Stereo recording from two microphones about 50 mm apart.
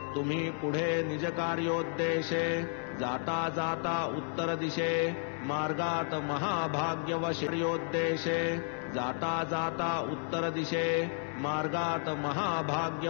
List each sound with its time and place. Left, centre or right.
0.9 s mantra: centre
7.9 s music: centre
8.9 s mantra: centre